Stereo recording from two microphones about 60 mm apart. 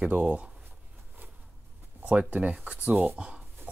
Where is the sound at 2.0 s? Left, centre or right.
Right.